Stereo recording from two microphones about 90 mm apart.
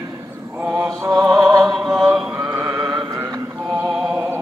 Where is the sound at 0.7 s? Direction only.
40° right (ahead or behind).